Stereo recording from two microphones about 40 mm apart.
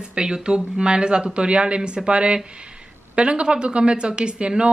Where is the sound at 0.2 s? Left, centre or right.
Right.